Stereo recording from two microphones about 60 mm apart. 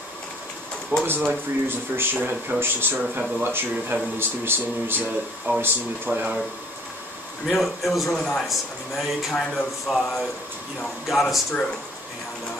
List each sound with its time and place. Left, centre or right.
1.0 s speech: right
3.0 s speech: centre
3.4 s speech: right
7.4 s a man's voice: centre